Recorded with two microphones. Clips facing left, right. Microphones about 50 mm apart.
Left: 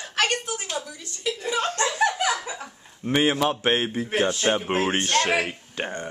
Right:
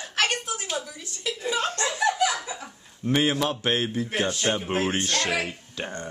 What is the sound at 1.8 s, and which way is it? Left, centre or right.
Laughter, left.